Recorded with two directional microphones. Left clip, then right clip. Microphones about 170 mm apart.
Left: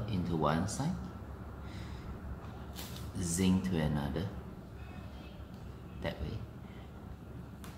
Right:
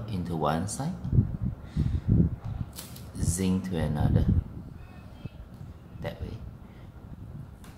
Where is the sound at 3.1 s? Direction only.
30° right (ahead or behind).